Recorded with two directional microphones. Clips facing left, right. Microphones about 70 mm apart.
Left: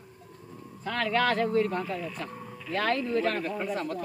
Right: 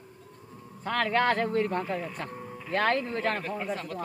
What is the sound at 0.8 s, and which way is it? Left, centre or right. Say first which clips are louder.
Speech: right 1 dB; right.